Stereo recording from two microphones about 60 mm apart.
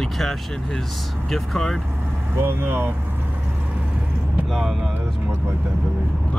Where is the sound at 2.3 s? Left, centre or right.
Right.